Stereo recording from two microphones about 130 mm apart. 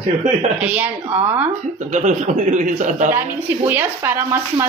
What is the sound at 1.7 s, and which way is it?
Speech, 70° right (ahead or behind).